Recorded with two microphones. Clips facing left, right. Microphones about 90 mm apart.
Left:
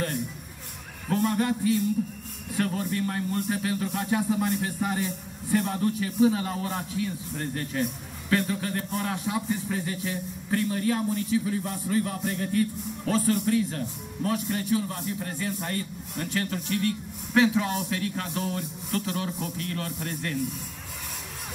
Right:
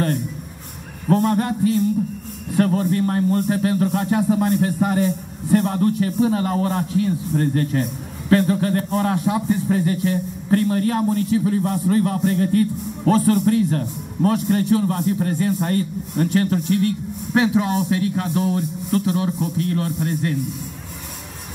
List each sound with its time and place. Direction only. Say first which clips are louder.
1.0 s speech: right 7 dB; 45° right (ahead or behind)